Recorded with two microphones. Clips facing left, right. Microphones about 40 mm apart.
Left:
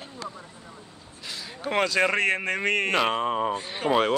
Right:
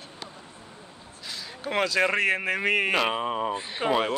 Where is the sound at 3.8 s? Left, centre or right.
Right.